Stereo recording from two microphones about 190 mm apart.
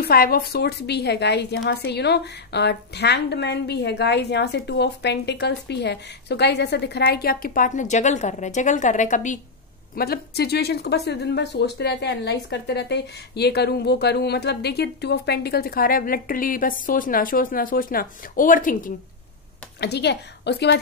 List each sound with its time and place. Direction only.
0.0 s a woman's voice: 50° left (ahead or behind)
9.9 s a woman's voice: 55° left (ahead or behind)
19.8 s a woman's voice: 60° left (ahead or behind)